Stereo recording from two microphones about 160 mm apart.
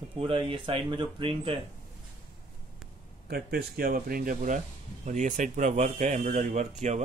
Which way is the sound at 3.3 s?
75° right (ahead or behind).